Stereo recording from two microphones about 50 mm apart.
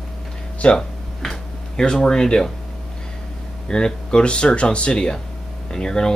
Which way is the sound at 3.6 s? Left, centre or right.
Centre.